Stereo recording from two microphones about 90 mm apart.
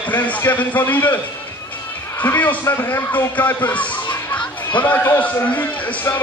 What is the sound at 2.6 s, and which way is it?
A man's voice, 30° left (ahead or behind).